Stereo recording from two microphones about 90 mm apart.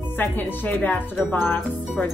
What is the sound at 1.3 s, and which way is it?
Speech, 20° left (ahead or behind).